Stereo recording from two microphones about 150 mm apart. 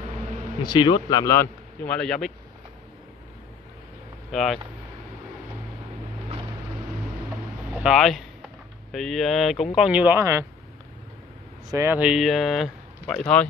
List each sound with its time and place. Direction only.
0.7 s a man's voice: 30° left (ahead or behind); by 2.3 s 5° left (ahead or behind)
4.3 s speech: centre (ahead or behind)
7.7 s speech: 5° right (ahead or behind)
11.7 s speech: 15° right (ahead or behind)